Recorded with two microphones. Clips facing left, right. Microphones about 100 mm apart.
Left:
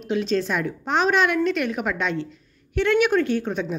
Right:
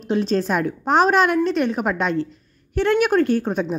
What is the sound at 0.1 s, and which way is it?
A woman's voice, 40° right (ahead or behind).